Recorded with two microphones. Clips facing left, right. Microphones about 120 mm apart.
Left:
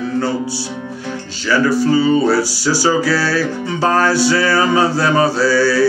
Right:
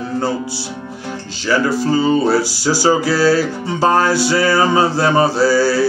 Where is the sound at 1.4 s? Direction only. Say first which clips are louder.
Left 2 dB; 15° right (ahead or behind).